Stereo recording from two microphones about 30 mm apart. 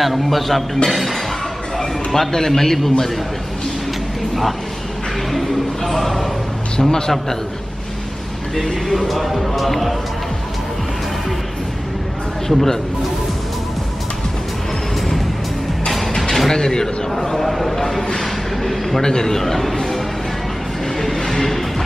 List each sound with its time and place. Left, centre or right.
0.0 s speech: centre
1.8 s a man's voice: centre
5.9 s speech: centre
6.8 s a man's voice: left
8.8 s speech: centre
12.4 s speech: centre
16.2 s speech: centre
17.1 s speech: centre
18.2 s a sound: centre
18.9 s a man's voice: centre
19.4 s speech: centre
21.0 s train: centre